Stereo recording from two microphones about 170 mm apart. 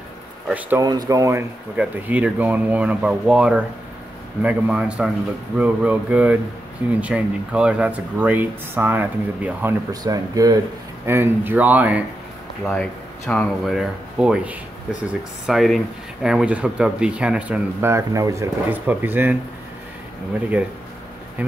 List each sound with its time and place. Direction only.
0.5 s speech: 10° right (ahead or behind)
0.8 s speech: 25° right (ahead or behind)
1.8 s speech: 10° right (ahead or behind)
10.0 s speech: 20° right (ahead or behind)
13.3 s speech: 5° left (ahead or behind); by 19.3 s 10° right (ahead or behind)
21.4 s speech: 10° right (ahead or behind)